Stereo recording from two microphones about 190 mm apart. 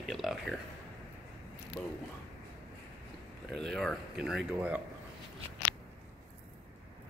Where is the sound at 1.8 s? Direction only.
15° left (ahead or behind).